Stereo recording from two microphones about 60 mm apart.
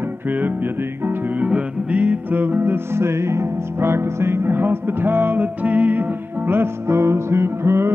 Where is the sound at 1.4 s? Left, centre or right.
Right.